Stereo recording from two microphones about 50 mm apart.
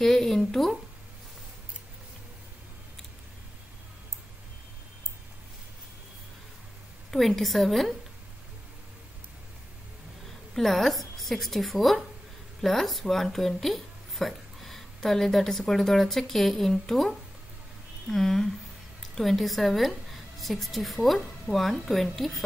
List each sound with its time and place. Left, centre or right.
0.0 s a sound: centre
7.1 s a woman's voice: centre
10.2 s a woman's voice: centre
18.0 s a woman's voice: centre